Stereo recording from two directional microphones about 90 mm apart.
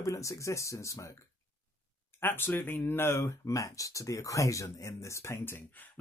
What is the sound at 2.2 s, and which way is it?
Speech, 25° left (ahead or behind).